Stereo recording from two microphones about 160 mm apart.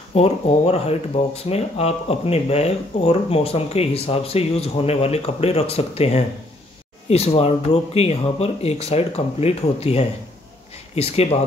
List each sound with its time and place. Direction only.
0.1 s speech: 40° left (ahead or behind)